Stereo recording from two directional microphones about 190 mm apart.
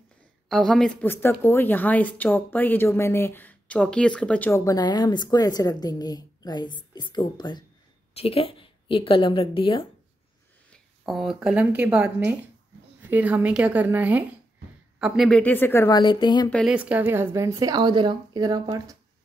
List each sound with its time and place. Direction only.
0.5 s a woman's voice: centre (ahead or behind); by 9.8 s 30° left (ahead or behind)
10.7 s a woman's voice: centre (ahead or behind)
16.0 s a woman's voice: 25° left (ahead or behind)
16.4 s speech: 5° left (ahead or behind)
16.7 s speech: 10° right (ahead or behind)